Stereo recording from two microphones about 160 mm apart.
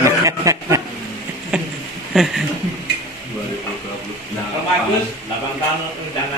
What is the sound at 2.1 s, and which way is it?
Speech, centre (ahead or behind).